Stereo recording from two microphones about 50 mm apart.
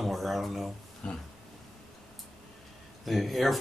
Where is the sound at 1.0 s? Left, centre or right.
Centre.